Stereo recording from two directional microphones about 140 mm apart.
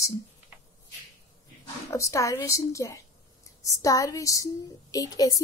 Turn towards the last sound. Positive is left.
turn(degrees=25)  # may be behind; listen again after turning